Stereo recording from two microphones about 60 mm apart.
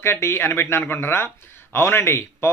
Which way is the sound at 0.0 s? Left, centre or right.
Left.